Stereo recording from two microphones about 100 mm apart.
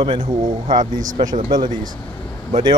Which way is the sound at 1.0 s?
40° right (ahead or behind).